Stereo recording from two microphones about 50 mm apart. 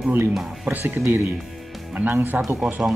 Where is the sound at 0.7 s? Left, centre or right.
Right.